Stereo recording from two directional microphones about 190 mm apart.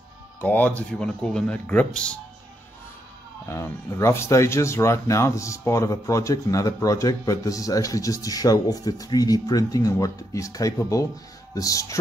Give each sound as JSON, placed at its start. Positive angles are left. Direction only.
{"t": 0.4, "sound": "speech", "side_deg": 10}
{"t": 3.4, "sound": "speech", "side_deg": 15}